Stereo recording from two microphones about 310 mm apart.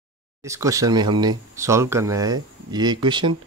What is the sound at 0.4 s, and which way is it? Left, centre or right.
Speech, centre.